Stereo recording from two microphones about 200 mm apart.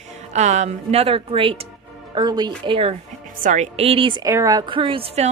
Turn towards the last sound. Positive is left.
turn(degrees=-30)  # may be behind; listen again after turning